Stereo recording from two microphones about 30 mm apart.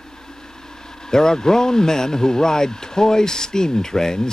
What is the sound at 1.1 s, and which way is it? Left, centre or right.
Speech, left.